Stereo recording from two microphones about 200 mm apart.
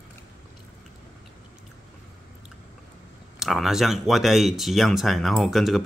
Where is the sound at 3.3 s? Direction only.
Centre (ahead or behind).